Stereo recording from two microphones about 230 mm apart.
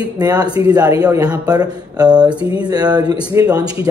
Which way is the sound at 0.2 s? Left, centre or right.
Centre.